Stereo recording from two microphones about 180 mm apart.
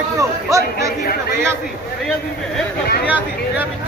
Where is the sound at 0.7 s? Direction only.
55° left (ahead or behind).